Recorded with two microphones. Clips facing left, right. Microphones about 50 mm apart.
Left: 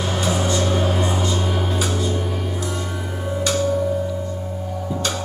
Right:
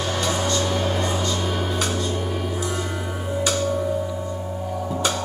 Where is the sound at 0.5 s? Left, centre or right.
Centre.